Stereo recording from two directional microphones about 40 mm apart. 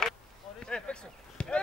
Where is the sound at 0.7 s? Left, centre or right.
Left.